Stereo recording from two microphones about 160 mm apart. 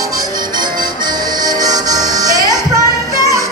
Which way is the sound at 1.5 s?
25° right (ahead or behind).